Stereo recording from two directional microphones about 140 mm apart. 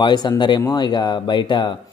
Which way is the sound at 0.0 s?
30° left (ahead or behind).